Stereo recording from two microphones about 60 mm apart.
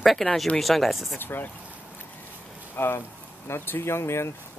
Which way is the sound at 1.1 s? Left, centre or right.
Left.